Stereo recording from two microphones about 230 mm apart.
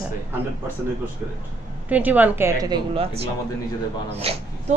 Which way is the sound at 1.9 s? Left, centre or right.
Centre.